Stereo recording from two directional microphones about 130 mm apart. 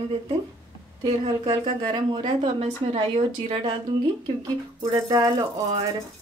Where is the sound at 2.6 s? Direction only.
50° right (ahead or behind).